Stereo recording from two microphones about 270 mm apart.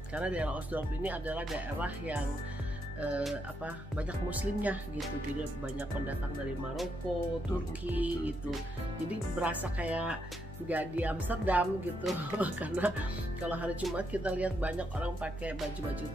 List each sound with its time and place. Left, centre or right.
0.1 s speech: centre
7.9 s speech: centre